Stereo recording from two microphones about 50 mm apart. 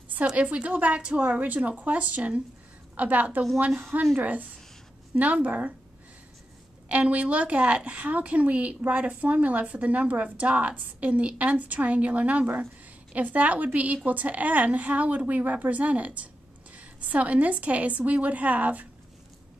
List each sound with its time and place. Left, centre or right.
0.3 s a woman's voice: right
6.9 s a woman's voice: right